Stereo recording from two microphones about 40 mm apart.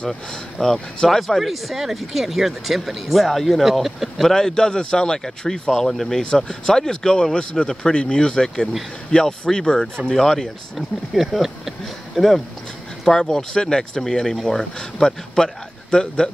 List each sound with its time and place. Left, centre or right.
0.6 s speech: centre
1.2 s speech: centre
4.3 s speech: centre
6.2 s a man's voice: centre
11.1 s speech: centre; by 14.0 s left
14.4 s a man's voice: centre